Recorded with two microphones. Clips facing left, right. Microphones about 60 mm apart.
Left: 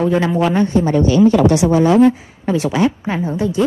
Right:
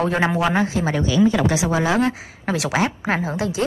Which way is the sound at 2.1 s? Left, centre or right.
Right.